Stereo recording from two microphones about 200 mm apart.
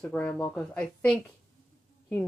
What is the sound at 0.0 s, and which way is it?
Speech, 5° left (ahead or behind).